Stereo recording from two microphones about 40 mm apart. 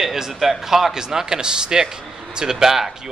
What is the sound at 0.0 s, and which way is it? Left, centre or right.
Speech, centre.